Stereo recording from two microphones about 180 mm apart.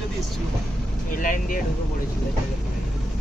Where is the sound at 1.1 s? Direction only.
50° left (ahead or behind).